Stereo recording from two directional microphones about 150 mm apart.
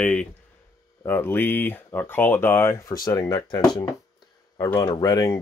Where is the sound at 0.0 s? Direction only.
5° left (ahead or behind).